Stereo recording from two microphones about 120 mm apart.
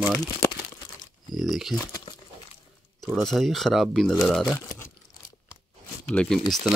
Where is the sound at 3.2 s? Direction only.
Centre (ahead or behind).